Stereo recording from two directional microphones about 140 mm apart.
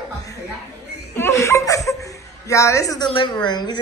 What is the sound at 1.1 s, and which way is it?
Laughter, 20° left (ahead or behind).